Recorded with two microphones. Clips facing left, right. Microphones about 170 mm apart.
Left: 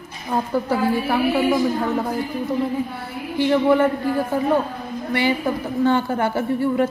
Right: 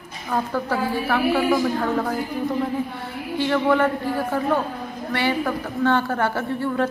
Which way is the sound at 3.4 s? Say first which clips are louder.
Left 3 dB; 15° left (ahead or behind).